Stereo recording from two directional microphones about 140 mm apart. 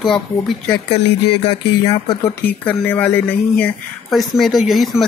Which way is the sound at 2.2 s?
15° left (ahead or behind).